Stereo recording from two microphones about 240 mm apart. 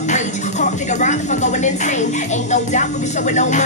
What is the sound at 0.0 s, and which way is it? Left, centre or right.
Speech, left.